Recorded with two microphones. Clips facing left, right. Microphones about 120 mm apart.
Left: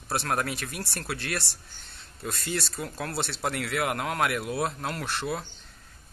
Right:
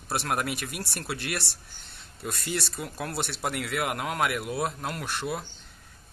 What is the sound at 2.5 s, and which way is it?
Speech, 5° right (ahead or behind).